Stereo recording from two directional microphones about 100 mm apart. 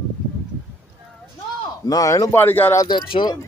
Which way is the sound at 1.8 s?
35° left (ahead or behind).